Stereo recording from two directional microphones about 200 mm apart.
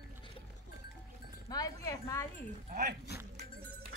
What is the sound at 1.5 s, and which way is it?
Music, 15° left (ahead or behind).